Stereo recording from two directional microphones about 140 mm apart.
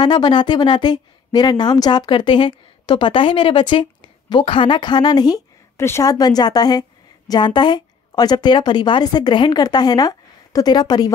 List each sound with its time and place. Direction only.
0.0 s a woman's voice: 30° left (ahead or behind)